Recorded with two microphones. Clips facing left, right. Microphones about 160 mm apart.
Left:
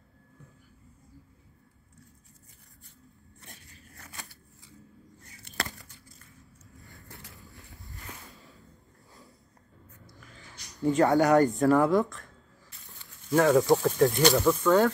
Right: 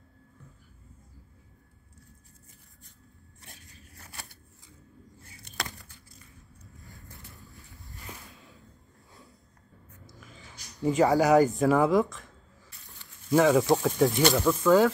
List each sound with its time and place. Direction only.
6.8 s vehicle: centre (ahead or behind)
7.1 s vehicle: 90° left
7.3 s a sound: centre (ahead or behind)
10.8 s speech: centre (ahead or behind)
13.3 s speech: 5° right (ahead or behind)